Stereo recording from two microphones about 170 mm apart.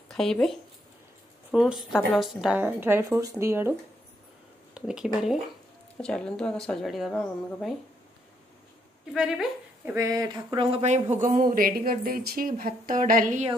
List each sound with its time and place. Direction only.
0.1 s a woman's voice: 5° left (ahead or behind); by 3.7 s 15° right (ahead or behind)
4.7 s a woman's voice: 5° right (ahead or behind)
9.1 s speech: 5° right (ahead or behind)
9.9 s speech: 20° right (ahead or behind); by 13.5 s 50° right (ahead or behind)